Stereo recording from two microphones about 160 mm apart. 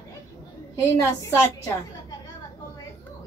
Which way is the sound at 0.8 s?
15° left (ahead or behind).